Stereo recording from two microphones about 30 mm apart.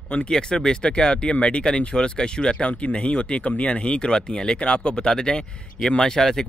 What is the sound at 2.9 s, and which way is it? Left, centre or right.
Speech, left.